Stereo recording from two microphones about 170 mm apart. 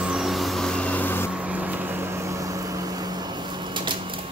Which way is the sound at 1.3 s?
10° right (ahead or behind).